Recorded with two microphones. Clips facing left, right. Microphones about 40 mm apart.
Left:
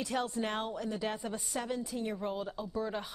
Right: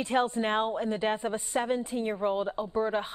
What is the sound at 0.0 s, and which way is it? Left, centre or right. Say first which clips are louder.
A woman's voice: right 7 dB; right.